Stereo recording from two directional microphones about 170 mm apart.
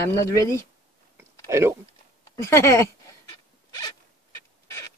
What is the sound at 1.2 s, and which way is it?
Clicking, 15° right (ahead or behind).